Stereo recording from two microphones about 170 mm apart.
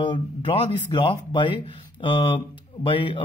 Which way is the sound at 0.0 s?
30° left (ahead or behind).